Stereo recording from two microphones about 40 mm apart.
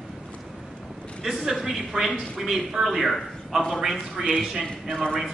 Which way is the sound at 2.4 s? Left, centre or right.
Centre.